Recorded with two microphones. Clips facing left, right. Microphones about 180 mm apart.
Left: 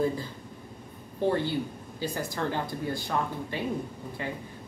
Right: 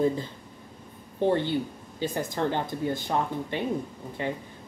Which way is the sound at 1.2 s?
20° right (ahead or behind).